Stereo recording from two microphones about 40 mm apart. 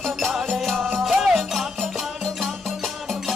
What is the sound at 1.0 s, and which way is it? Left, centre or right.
Music, centre.